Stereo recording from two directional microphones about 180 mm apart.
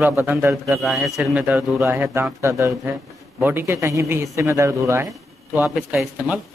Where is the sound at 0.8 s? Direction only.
Centre (ahead or behind).